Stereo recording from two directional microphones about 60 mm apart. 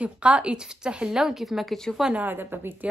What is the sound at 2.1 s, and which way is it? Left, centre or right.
Speech, right.